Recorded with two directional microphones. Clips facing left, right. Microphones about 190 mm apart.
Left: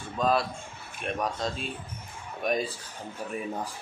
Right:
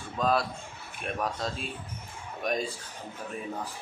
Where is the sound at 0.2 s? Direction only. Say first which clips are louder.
Left 1 dB; centre (ahead or behind).